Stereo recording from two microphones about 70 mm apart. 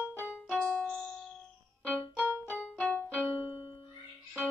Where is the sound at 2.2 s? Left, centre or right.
Right.